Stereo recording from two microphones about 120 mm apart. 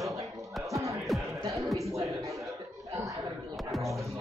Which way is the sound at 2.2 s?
25° right (ahead or behind).